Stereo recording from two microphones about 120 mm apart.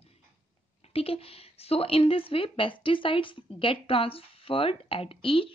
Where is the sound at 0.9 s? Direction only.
55° left (ahead or behind).